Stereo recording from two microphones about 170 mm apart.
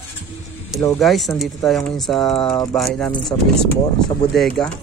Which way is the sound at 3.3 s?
20° left (ahead or behind).